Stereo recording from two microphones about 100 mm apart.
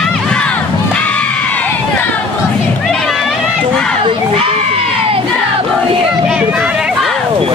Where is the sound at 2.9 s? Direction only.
5° left (ahead or behind).